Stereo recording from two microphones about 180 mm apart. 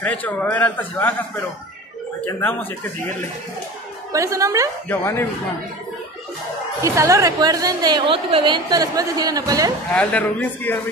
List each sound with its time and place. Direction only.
0.0 s a man's voice: 10° left (ahead or behind)
2.2 s a man's voice: 10° left (ahead or behind)
4.1 s a woman's voice: 15° right (ahead or behind)
4.8 s a man's voice: 15° left (ahead or behind)
6.8 s a woman's voice: 15° right (ahead or behind)
9.9 s a man's voice: 10° left (ahead or behind)